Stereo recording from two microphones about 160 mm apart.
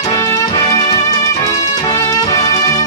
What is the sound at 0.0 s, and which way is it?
Music, 20° left (ahead or behind).